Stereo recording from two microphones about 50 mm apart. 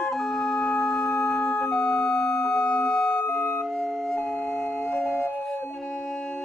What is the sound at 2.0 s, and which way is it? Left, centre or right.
Organ, centre.